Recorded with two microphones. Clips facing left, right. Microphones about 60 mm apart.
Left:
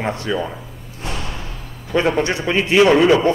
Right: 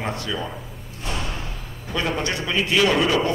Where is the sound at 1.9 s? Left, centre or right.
Left.